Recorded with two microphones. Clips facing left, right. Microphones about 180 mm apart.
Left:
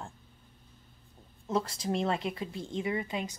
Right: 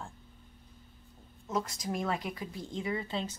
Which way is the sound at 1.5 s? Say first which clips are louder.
Left 3 dB; 30° left (ahead or behind).